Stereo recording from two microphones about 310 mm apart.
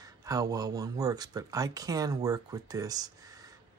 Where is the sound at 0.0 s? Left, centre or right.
Centre.